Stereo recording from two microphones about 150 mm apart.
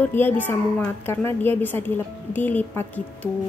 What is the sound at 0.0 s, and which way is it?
Speech, 15° left (ahead or behind).